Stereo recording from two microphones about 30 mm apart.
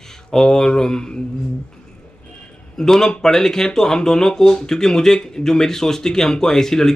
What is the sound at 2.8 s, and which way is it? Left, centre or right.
Speech, centre.